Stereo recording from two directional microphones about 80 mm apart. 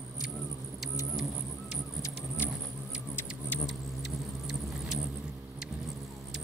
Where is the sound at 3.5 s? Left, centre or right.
Left.